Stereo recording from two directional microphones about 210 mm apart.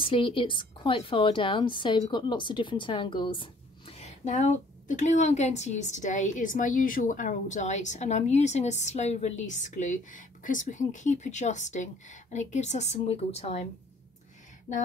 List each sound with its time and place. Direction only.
0.0 s a woman's voice: 25° left (ahead or behind)
14.7 s a woman's voice: 35° left (ahead or behind)